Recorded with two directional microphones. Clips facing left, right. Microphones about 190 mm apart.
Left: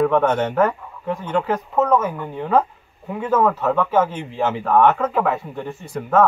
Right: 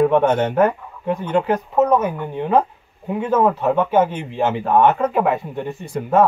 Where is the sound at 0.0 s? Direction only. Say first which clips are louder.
Right 2 dB; 25° right (ahead or behind).